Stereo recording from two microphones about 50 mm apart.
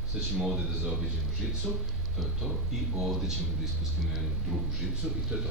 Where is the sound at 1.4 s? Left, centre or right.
Centre.